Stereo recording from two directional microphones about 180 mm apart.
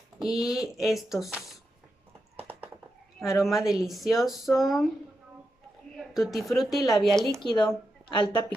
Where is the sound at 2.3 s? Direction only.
10° right (ahead or behind).